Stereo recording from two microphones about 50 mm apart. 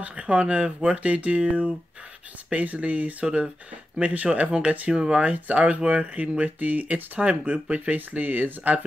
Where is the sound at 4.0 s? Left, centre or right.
Right.